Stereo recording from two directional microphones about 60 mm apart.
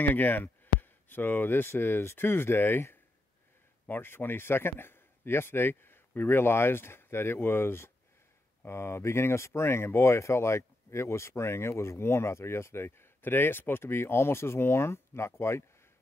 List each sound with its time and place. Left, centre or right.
0.0 s speech: left